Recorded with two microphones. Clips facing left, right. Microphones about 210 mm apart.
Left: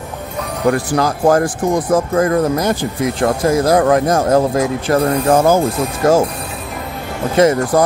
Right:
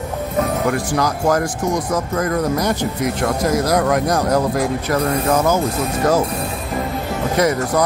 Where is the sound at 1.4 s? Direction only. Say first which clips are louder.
Left 4 dB; 55° left (ahead or behind).